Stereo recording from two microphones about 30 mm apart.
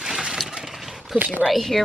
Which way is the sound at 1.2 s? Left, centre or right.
Right.